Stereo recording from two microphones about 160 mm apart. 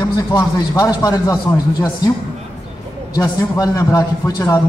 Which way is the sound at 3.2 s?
20° left (ahead or behind).